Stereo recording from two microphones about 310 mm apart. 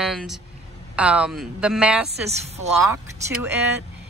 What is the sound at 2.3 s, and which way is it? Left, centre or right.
Speech, right.